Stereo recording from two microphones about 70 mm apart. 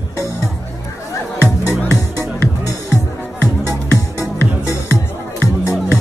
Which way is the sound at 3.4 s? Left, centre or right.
Left.